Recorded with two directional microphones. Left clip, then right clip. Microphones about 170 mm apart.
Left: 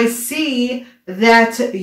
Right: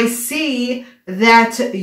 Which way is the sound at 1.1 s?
25° right (ahead or behind).